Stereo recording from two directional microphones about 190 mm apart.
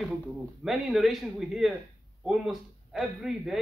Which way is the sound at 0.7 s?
Centre (ahead or behind).